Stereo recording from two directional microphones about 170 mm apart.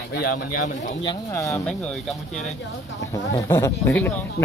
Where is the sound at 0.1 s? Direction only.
65° left (ahead or behind).